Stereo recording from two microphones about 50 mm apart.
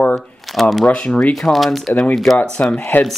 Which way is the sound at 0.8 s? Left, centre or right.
Left.